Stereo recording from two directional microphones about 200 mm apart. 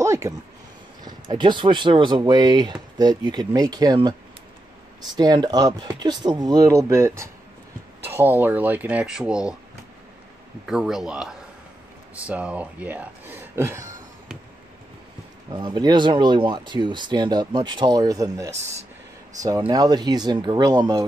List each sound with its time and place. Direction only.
0.0 s a sound: 15° right (ahead or behind)
1.0 s speech: 20° right (ahead or behind)
5.1 s speech: 20° right (ahead or behind); by 9.6 s 5° right (ahead or behind)
10.7 s a man's voice: centre (ahead or behind)
15.5 s speech: 20° right (ahead or behind)